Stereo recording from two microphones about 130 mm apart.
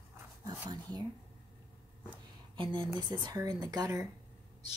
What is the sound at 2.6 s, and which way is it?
Speech, 40° right (ahead or behind).